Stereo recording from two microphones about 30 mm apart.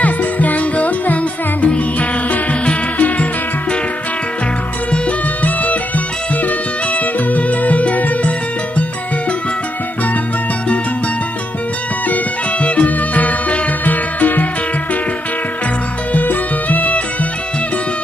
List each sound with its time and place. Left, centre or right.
0.0 s music: left
5.4 s music: left
12.5 s music: left
12.8 s music: left
13.8 s music: left
16.1 s music: left